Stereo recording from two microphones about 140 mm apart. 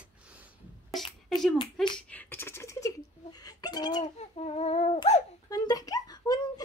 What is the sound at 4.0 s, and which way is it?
Child singing, 50° left (ahead or behind).